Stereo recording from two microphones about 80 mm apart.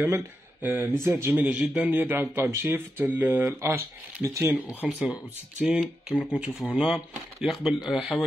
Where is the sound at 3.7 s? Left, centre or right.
Right.